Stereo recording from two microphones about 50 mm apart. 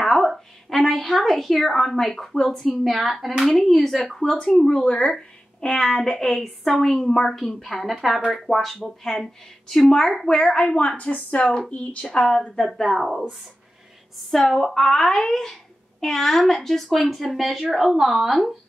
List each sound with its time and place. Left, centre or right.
0.0 s a sound: centre
0.7 s a woman's voice: centre
5.8 s a woman's voice: centre
12.6 s a woman's voice: centre
14.3 s a woman's voice: centre